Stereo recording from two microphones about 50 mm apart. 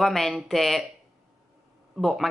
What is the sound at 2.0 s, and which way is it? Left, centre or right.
Speech, centre.